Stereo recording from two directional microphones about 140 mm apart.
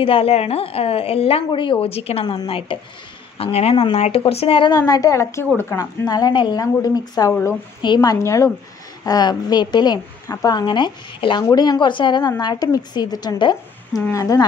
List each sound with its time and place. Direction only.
0.0 s a woman's voice: 40° left (ahead or behind); by 14.4 s 25° left (ahead or behind)